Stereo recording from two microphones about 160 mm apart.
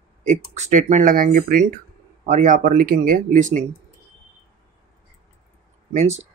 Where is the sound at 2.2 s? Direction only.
50° right (ahead or behind).